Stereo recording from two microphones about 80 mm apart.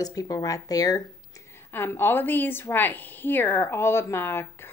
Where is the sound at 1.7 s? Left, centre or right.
Left.